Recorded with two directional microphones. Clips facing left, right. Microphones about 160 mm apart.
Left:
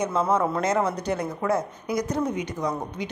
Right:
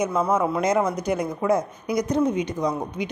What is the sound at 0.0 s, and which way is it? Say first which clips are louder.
A woman's voice: right 1 dB; 10° right (ahead or behind).